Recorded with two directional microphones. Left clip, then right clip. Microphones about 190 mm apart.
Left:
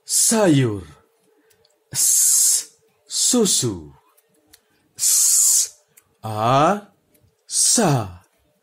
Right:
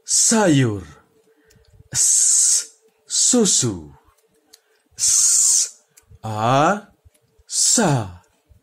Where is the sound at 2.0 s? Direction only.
15° right (ahead or behind).